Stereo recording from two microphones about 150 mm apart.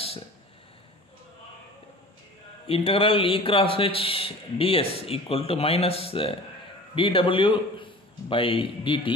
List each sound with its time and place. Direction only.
2.6 s a man's voice: 40° left (ahead or behind)